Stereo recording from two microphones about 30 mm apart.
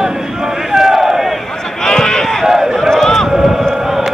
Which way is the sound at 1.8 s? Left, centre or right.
Left.